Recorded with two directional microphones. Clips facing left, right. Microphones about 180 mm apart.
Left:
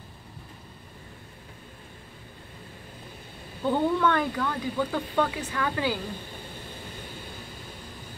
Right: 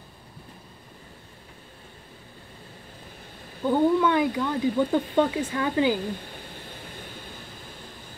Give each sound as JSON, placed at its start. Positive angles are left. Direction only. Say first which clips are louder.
{"t": 3.7, "sound": "speech", "louder": "right 4 dB", "side_deg": -10}